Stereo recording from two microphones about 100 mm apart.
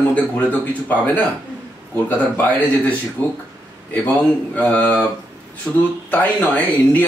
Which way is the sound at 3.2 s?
30° right (ahead or behind).